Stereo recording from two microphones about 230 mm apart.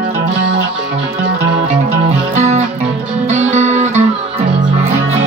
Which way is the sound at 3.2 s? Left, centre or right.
Right.